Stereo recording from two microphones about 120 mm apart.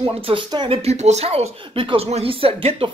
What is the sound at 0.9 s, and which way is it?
Speech, 70° right (ahead or behind).